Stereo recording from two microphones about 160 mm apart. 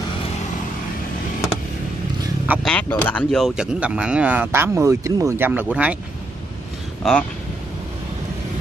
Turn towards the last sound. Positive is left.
turn(degrees=5)  # may be behind; listen again after turning